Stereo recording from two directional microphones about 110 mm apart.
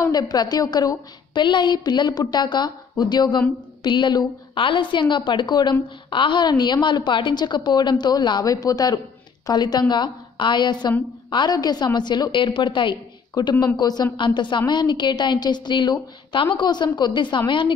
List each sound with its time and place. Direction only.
0.0 s a woman's voice: 35° left (ahead or behind)